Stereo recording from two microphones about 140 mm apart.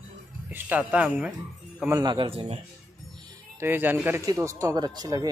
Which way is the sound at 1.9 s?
25° right (ahead or behind).